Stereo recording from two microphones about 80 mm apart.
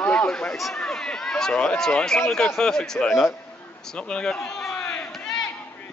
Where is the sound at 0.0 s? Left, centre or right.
Centre.